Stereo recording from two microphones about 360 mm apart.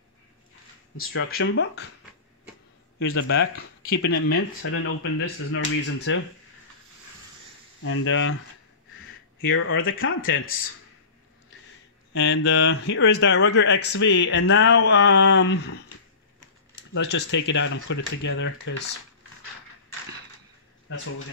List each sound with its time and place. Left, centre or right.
0.9 s speech: left
3.0 s speech: left
4.4 s speech: left
7.8 s speech: left
9.5 s speech: left
12.1 s speech: left
16.9 s speech: left